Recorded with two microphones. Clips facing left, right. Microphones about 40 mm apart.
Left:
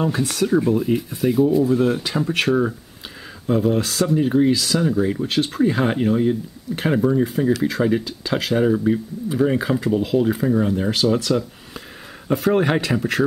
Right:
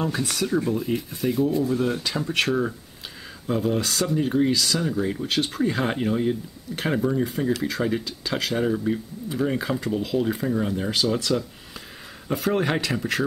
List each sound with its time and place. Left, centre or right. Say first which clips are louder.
0.2 s speech: left 5 dB; centre